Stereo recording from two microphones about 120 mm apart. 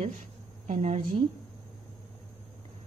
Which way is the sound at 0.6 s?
70° right (ahead or behind).